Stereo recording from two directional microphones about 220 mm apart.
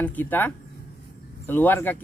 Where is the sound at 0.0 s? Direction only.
10° left (ahead or behind).